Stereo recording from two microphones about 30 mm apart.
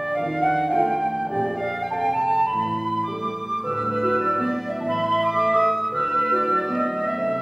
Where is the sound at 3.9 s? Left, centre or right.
Centre.